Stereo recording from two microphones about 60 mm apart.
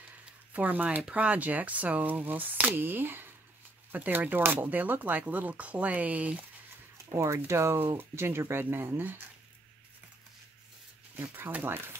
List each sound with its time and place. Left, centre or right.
0.5 s speech: right
7.2 s speech: right
11.3 s speech: right